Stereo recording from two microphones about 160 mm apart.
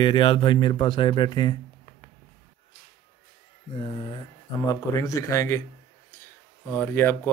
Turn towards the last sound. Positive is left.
turn(degrees=10)  # may be behind; listen again after turning